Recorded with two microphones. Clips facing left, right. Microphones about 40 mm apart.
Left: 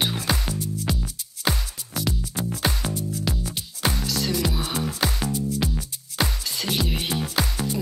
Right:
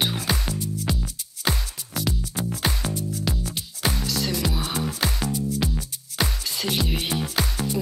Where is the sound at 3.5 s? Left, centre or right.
Centre.